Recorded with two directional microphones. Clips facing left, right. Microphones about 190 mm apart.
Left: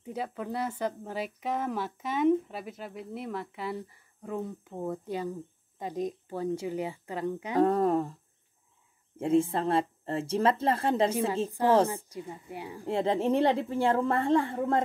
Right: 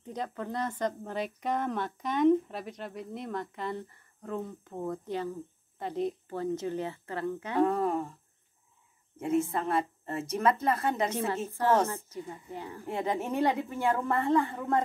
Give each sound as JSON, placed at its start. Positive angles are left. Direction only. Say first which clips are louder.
{"t": 0.0, "sound": "speech", "louder": "left 1 dB", "side_deg": 10}
{"t": 7.5, "sound": "speech", "louder": "left 3 dB", "side_deg": 40}
{"t": 9.2, "sound": "a woman's voice", "louder": "left 3 dB", "side_deg": 30}
{"t": 11.9, "sound": "speech", "louder": "left 1 dB", "side_deg": 15}
{"t": 12.8, "sound": "a woman's voice", "louder": "left 5 dB", "side_deg": 30}